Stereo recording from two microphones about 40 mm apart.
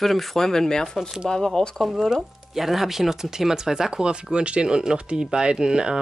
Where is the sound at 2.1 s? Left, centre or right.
Centre.